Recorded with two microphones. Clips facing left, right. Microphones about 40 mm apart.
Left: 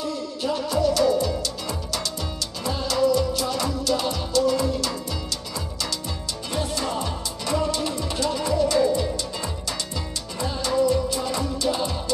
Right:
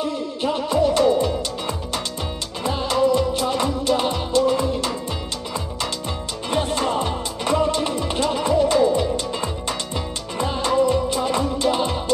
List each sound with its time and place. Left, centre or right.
0.0 s music: right
6.5 s music: right